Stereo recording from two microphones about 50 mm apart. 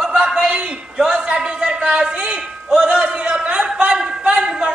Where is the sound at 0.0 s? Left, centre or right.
Centre.